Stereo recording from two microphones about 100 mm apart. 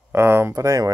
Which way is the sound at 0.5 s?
35° right (ahead or behind).